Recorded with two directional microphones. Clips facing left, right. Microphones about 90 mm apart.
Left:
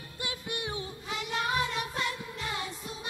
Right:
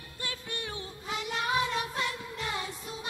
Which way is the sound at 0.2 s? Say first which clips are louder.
Left 2 dB; 15° left (ahead or behind).